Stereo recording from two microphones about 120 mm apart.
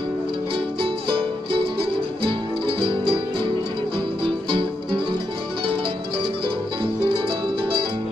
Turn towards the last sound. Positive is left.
turn(degrees=-45)  # may be behind; listen again after turning